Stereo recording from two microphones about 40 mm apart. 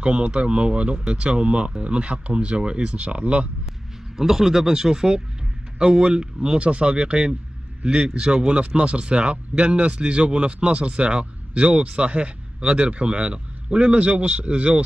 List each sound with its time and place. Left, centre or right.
0.0 s speech: right
4.2 s speech: centre; by 14.8 s right